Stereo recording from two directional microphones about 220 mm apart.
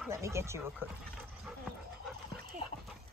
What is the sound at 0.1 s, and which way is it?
Speech, 10° right (ahead or behind).